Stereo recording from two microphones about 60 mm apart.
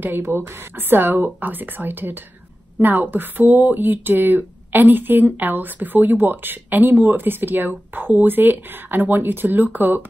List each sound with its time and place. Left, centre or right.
0.0 s speech: right